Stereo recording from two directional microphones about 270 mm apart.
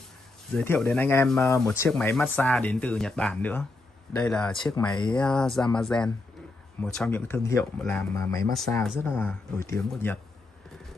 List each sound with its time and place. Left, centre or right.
0.6 s speech: centre
4.6 s speech: centre
5.1 s speech: centre